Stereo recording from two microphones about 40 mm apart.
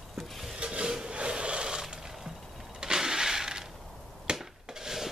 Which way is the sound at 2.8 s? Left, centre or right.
Centre.